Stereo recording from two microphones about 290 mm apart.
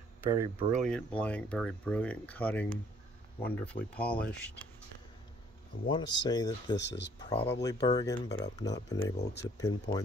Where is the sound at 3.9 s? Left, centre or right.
Centre.